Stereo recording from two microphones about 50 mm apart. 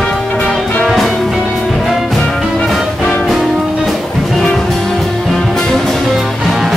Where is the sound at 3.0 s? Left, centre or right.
Centre.